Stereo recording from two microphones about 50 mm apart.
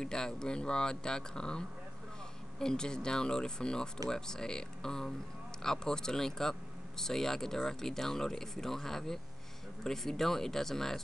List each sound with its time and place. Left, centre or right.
0.0 s speech: centre